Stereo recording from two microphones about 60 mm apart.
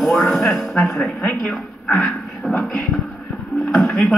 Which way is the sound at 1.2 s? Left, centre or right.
Centre.